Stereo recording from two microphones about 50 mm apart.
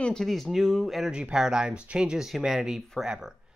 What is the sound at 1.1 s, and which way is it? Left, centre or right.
Speech, centre.